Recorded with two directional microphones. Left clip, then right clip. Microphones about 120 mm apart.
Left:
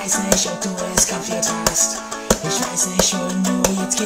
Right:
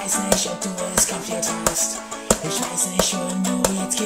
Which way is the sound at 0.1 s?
30° left (ahead or behind).